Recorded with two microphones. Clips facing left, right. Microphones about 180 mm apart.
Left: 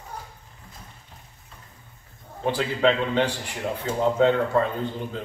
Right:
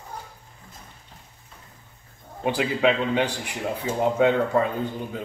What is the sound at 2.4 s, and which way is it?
Speech, 10° right (ahead or behind).